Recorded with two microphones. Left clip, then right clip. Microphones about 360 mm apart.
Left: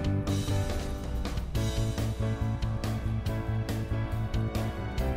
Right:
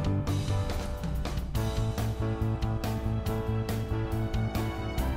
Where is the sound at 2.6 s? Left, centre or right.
Centre.